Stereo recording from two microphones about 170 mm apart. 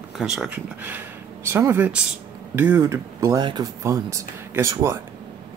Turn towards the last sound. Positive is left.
turn(degrees=-15)  # may be behind; listen again after turning